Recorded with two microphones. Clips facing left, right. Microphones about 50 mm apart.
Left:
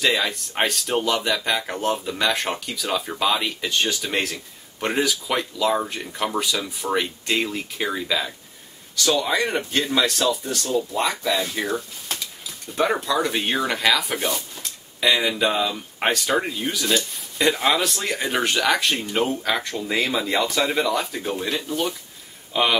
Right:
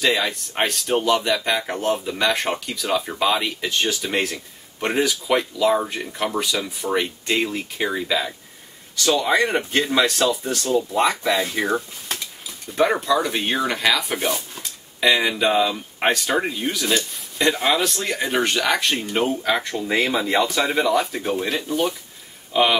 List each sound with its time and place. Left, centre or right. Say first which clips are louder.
0.0 s speech: right 1 dB; centre
10.2 s speech: right 2 dB; centre
10.7 s speech: right 4 dB; centre
12.7 s speech: right 3 dB; centre
19.9 s speech: right 2 dB; centre